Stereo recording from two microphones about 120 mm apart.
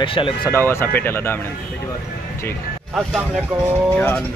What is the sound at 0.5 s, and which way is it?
Speech, 20° left (ahead or behind).